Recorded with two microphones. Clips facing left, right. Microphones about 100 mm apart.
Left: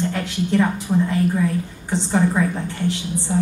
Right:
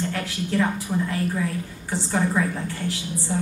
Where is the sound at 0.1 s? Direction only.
20° left (ahead or behind).